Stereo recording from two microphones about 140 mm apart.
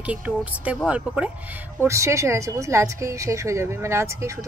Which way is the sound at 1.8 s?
20° right (ahead or behind).